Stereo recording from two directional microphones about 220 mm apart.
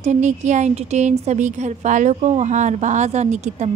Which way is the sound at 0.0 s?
30° right (ahead or behind).